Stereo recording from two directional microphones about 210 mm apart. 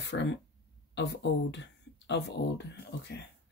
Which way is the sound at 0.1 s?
55° left (ahead or behind).